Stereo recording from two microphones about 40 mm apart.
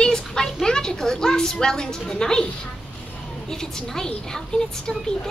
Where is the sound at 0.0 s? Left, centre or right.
Centre.